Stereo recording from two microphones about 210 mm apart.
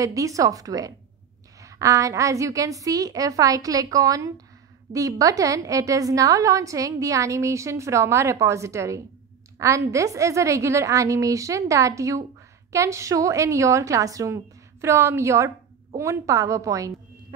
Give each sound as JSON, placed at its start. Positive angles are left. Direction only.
{"t": 0.0, "sound": "a woman's voice", "side_deg": -15}